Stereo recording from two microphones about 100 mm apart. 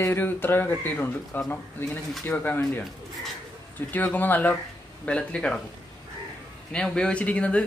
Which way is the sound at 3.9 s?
15° left (ahead or behind).